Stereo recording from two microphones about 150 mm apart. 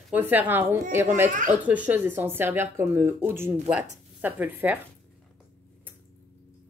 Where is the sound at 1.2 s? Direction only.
55° right (ahead or behind).